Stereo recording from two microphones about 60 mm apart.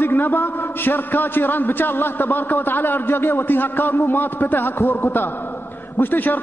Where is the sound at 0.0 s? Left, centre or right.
Left.